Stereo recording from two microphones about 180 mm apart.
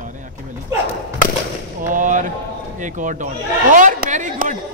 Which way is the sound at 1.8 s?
45° right (ahead or behind).